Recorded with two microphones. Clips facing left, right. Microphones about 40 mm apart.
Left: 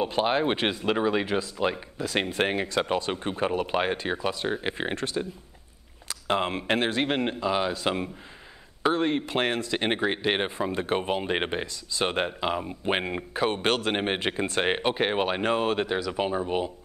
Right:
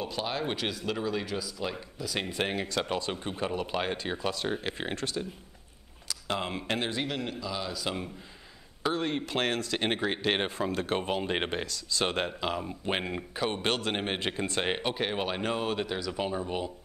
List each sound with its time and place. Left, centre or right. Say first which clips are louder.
0.0 s speech: left 8 dB; left